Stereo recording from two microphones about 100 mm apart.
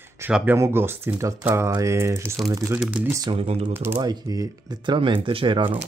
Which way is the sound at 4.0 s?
40° right (ahead or behind).